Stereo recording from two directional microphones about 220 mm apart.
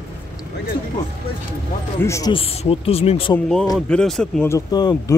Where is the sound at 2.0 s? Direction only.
15° left (ahead or behind).